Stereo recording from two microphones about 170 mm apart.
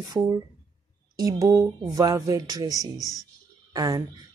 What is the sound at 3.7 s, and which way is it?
Speech, 20° right (ahead or behind).